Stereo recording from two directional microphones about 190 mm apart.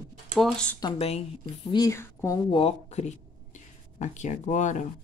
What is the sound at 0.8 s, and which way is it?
Speech, 30° left (ahead or behind).